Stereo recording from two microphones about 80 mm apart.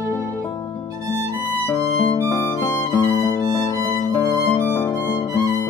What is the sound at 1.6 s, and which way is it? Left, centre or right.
Music, left.